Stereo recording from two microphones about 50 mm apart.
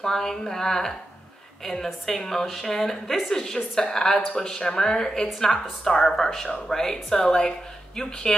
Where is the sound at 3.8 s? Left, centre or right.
Left.